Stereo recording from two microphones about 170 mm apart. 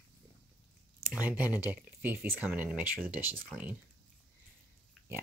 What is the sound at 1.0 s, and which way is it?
Speech, 10° right (ahead or behind).